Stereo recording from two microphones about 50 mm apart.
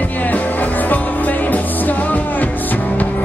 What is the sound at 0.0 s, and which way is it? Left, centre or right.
Music, left.